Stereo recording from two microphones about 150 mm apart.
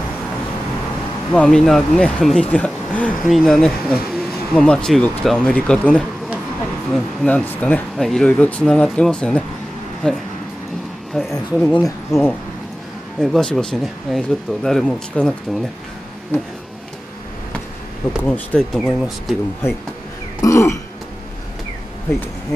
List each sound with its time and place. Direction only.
1.3 s speech: 5° left (ahead or behind)
18.2 s speech: 10° left (ahead or behind)
20.4 s throat clearing: 20° left (ahead or behind)